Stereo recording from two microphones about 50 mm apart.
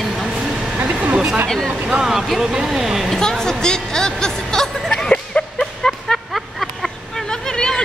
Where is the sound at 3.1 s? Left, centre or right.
Centre.